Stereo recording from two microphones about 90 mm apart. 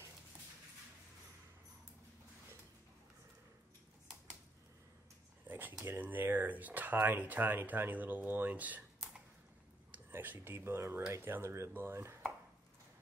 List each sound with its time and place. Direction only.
5.5 s a sound: 20° right (ahead or behind)
5.9 s speech: 20° right (ahead or behind)
9.8 s speech: 20° right (ahead or behind)